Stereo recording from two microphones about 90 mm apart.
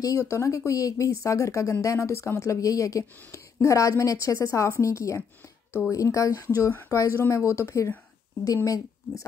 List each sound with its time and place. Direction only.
0.0 s a woman's voice: 35° left (ahead or behind)